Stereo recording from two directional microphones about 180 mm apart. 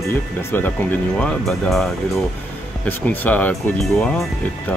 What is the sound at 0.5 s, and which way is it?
Speech, 10° left (ahead or behind).